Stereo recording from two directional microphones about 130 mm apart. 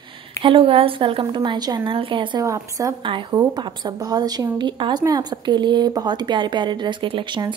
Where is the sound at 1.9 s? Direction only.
40° right (ahead or behind).